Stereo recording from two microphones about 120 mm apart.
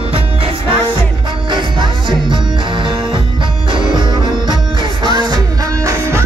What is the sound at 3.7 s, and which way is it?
Music, 40° right (ahead or behind).